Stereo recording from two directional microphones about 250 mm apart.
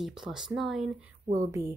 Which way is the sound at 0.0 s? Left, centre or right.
Centre.